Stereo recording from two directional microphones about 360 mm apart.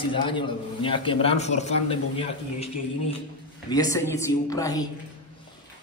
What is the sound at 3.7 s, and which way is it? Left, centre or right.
A man's voice, centre.